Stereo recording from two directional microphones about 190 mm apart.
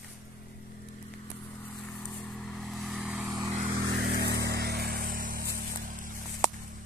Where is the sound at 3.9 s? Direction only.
55° right (ahead or behind).